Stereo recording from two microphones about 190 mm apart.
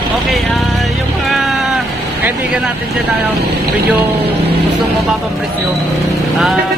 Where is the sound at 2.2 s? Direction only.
5° right (ahead or behind).